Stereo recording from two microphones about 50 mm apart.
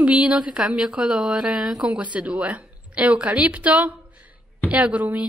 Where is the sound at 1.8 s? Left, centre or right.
Right.